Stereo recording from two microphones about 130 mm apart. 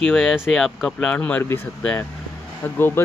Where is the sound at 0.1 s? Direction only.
5° left (ahead or behind).